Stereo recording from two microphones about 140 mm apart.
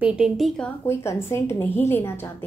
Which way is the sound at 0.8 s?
20° left (ahead or behind).